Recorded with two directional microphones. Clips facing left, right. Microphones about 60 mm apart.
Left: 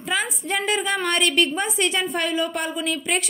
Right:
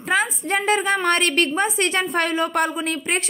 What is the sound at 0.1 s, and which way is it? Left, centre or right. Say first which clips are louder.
A woman's voice: right 4 dB; right.